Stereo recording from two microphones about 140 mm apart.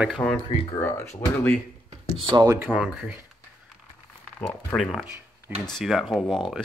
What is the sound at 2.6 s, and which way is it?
Speech, 10° right (ahead or behind).